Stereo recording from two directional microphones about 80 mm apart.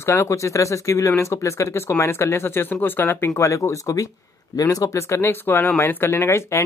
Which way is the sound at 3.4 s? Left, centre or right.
Left.